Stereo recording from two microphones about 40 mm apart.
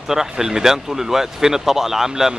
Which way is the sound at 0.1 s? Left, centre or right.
Centre.